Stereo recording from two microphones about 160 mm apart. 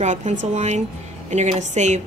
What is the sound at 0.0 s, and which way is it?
A woman's voice, 45° right (ahead or behind).